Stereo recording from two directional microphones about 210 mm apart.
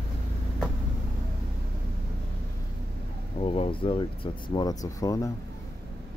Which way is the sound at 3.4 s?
25° left (ahead or behind).